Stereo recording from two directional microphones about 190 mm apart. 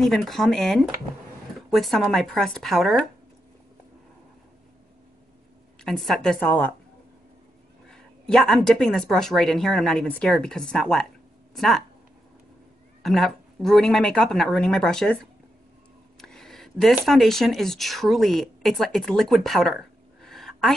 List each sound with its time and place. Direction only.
0.0 s speech: centre (ahead or behind)
5.9 s speech: centre (ahead or behind)
7.9 s speech: centre (ahead or behind)
13.0 s speech: centre (ahead or behind)
16.2 s speech: 5° left (ahead or behind)